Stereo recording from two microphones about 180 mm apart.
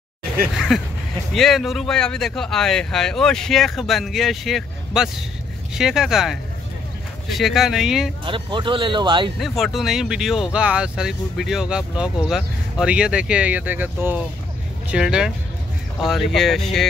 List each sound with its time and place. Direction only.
0.6 s speech: centre (ahead or behind)
8.3 s speech: 25° right (ahead or behind)
9.4 s speech: centre (ahead or behind)